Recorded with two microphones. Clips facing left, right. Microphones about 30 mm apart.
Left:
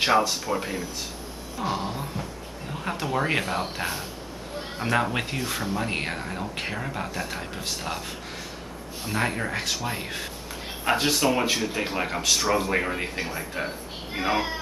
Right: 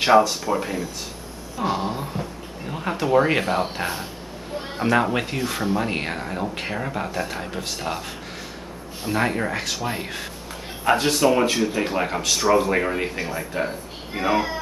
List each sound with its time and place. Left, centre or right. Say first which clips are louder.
0.5 s speech: right 4 dB; centre
1.7 s speech: right 4 dB; centre
9.0 s speech: right 4 dB; centre